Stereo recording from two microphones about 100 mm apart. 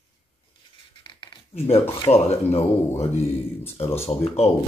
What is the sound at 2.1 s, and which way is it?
Speech, 90° left.